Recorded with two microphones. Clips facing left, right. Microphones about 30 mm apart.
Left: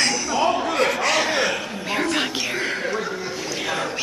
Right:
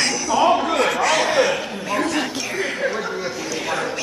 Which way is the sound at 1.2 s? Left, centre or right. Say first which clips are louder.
Right 3 dB; centre.